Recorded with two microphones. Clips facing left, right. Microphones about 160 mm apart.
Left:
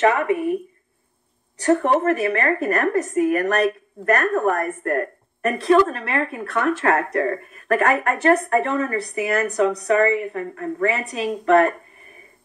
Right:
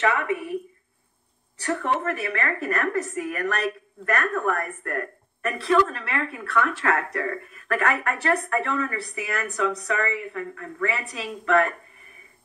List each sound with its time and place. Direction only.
0.0 s a woman's voice: 40° left (ahead or behind)
2.0 s a woman's voice: 45° left (ahead or behind)
2.3 s a woman's voice: 30° left (ahead or behind)
2.8 s a woman's voice: 45° left (ahead or behind)